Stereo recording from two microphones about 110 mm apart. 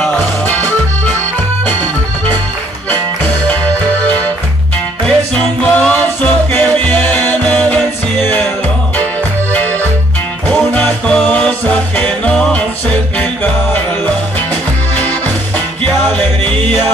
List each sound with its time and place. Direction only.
0.0 s music: 10° left (ahead or behind)
5.0 s music: 10° left (ahead or behind)
11.1 s music: 10° left (ahead or behind)
15.0 s music: 15° left (ahead or behind)